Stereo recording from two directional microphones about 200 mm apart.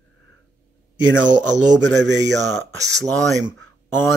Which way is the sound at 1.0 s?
70° right (ahead or behind).